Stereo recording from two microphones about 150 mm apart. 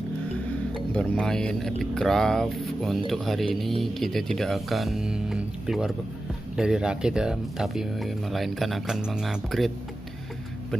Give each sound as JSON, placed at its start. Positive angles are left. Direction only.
{"t": 0.7, "sound": "speech", "side_deg": 5}